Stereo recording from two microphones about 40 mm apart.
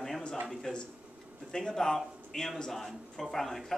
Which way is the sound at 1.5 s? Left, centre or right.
Centre.